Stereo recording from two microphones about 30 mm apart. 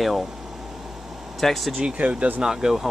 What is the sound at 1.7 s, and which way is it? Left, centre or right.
Speech, right.